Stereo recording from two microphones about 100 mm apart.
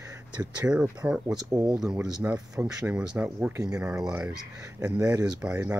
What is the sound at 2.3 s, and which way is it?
Speech, 35° right (ahead or behind).